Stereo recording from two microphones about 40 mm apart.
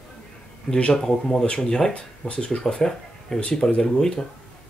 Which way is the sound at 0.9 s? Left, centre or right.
Centre.